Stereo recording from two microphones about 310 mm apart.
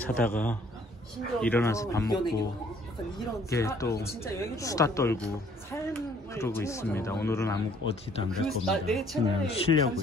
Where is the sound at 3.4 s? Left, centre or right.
Centre.